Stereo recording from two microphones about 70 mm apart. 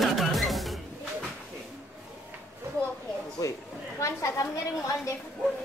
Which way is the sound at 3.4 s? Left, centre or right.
Left.